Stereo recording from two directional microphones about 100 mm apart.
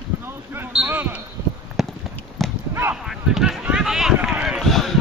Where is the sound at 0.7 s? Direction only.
15° right (ahead or behind).